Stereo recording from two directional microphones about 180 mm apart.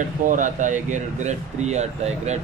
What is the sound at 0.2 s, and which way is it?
Speech, 45° right (ahead or behind).